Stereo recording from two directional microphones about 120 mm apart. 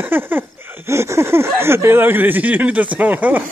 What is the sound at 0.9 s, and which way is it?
Speech, 25° right (ahead or behind).